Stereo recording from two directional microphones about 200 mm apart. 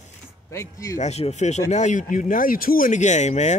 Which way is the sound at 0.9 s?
35° left (ahead or behind).